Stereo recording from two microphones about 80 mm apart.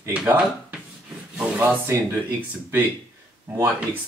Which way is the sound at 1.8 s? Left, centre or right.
Right.